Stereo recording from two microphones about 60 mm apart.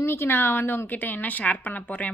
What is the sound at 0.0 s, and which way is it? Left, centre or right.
A woman's voice, left.